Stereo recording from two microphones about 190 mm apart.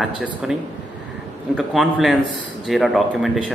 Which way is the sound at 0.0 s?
5° right (ahead or behind).